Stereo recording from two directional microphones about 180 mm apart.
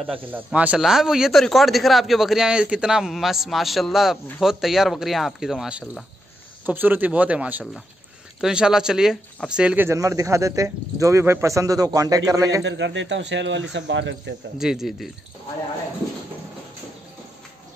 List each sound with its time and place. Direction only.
0.0 s speech: 5° right (ahead or behind)
12.6 s speech: 90° right
14.6 s speech: centre (ahead or behind)